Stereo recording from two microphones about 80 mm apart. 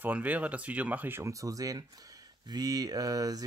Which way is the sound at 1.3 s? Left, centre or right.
Right.